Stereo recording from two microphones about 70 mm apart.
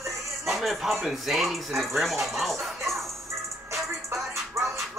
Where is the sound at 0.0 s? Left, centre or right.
Centre.